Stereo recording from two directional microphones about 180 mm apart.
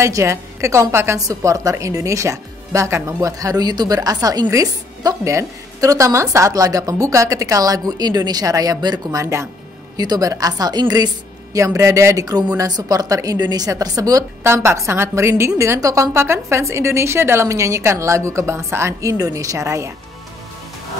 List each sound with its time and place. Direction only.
0.0 s a woman's voice: 15° right (ahead or behind)